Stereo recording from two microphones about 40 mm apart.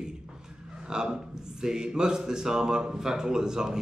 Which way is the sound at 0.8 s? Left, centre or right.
Centre.